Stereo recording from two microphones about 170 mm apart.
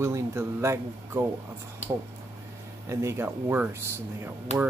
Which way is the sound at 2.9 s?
15° right (ahead or behind).